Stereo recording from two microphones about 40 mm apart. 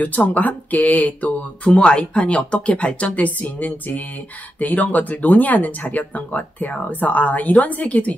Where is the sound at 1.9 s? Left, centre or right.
Left.